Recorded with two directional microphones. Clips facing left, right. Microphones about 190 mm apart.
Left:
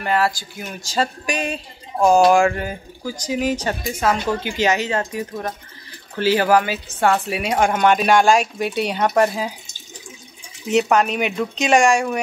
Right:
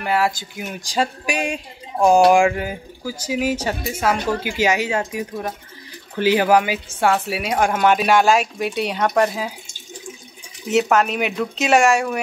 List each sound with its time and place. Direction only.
0.0 s speech: 10° right (ahead or behind)
0.3 s a woman's voice: 20° right (ahead or behind); by 9.5 s centre (ahead or behind)
10.7 s a woman's voice: centre (ahead or behind)